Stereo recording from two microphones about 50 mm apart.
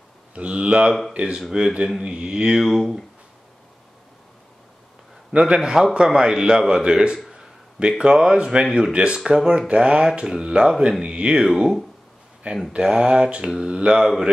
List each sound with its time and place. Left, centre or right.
0.3 s speech: right
2.6 s speech: centre
5.4 s speech: centre
7.2 s a sound: centre
8.0 s speech: centre